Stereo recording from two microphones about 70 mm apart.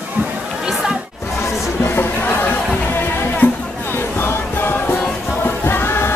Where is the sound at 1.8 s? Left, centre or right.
Left.